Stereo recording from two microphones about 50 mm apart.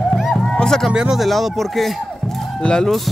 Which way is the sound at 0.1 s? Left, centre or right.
Centre.